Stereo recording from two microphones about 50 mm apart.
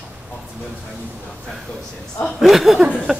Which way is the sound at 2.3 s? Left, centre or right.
Centre.